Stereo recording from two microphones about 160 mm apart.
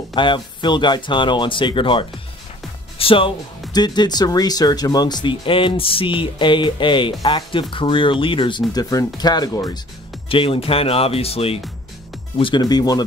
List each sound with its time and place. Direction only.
0.1 s speech: 30° left (ahead or behind)
10.3 s speech: 35° left (ahead or behind)